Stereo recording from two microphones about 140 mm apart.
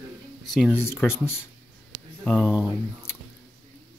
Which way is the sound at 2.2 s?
Centre (ahead or behind).